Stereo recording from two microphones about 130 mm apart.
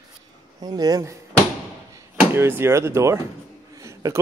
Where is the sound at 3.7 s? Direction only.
25° right (ahead or behind).